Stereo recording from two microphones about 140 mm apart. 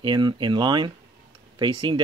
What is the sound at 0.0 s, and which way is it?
Speech, 30° right (ahead or behind).